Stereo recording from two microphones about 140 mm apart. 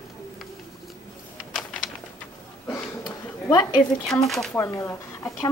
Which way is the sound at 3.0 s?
30° left (ahead or behind).